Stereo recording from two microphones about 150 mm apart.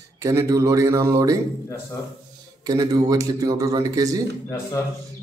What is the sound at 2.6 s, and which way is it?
Speech, 25° right (ahead or behind).